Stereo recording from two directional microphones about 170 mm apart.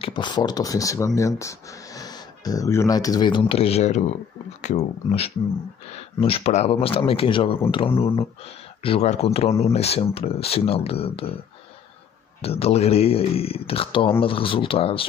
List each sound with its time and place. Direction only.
0.0 s speech: 25° left (ahead or behind)
12.4 s speech: 35° left (ahead or behind)